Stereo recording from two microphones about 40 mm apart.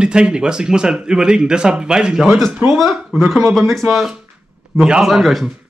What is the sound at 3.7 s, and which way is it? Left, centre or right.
Speech, centre.